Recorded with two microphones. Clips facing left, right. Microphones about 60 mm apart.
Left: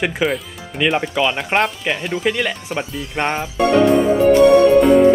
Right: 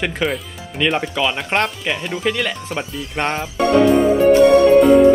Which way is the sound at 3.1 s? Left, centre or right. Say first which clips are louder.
Left 1 dB; centre.